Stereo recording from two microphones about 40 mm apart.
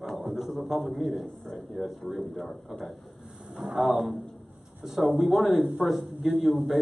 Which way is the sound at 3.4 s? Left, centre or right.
Right.